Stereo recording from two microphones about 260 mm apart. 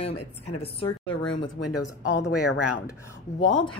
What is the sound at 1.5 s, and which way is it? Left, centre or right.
Speech, left.